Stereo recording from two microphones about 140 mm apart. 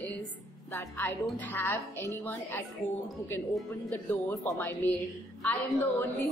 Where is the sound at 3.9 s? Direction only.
20° left (ahead or behind).